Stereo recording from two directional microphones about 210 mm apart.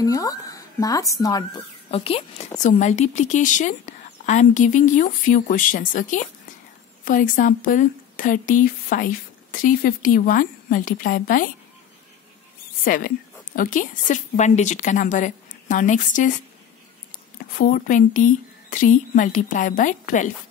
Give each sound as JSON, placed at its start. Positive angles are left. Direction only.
{"t": 0.0, "sound": "speech", "side_deg": 15}
{"t": 1.9, "sound": "a woman's voice", "side_deg": 25}
{"t": 12.8, "sound": "a woman's voice", "side_deg": 40}
{"t": 17.6, "sound": "a woman's voice", "side_deg": 40}